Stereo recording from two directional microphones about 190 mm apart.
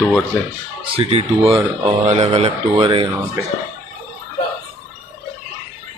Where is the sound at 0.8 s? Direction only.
30° right (ahead or behind).